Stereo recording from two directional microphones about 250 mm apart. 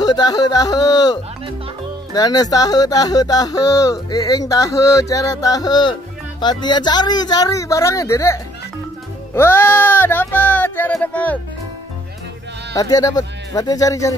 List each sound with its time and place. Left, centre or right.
0.0 s speech: centre
12.7 s speech: centre